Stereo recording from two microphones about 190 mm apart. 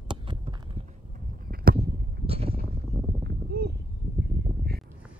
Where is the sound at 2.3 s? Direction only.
30° right (ahead or behind).